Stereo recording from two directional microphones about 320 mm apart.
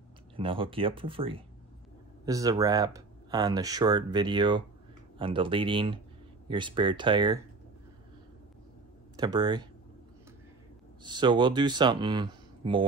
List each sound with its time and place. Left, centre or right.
0.4 s speech: centre
9.1 s speech: centre
11.1 s speech: centre